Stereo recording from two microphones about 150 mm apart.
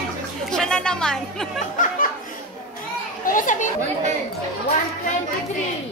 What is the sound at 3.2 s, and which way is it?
Speech, 60° left (ahead or behind).